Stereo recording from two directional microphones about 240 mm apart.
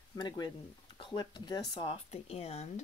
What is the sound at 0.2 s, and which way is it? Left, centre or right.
Speech, centre.